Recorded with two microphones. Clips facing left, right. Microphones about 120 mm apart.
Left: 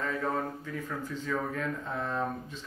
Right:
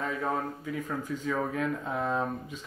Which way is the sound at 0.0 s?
10° right (ahead or behind).